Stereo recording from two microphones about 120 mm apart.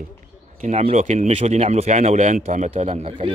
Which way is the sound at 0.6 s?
65° right (ahead or behind).